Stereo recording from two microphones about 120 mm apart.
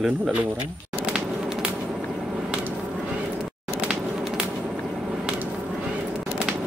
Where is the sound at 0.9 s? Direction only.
5° right (ahead or behind).